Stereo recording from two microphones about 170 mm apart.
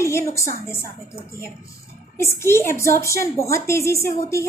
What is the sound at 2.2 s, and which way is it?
A woman's voice, 15° left (ahead or behind).